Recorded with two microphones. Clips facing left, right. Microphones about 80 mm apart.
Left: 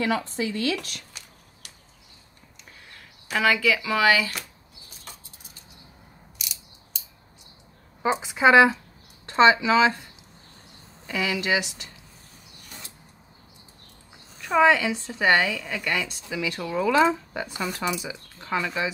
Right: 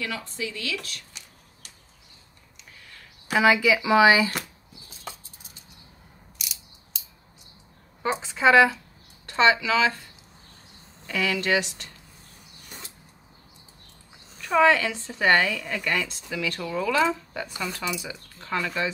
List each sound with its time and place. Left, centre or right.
0.4 s speech: left
3.3 s speech: centre
6.3 s mechanisms: centre
8.0 s speech: centre
11.1 s speech: centre
14.4 s speech: centre